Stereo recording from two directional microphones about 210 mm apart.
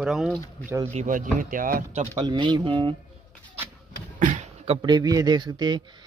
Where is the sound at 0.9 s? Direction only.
40° right (ahead or behind).